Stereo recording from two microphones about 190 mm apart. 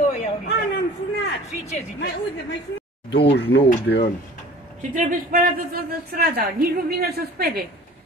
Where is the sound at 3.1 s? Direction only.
60° left (ahead or behind).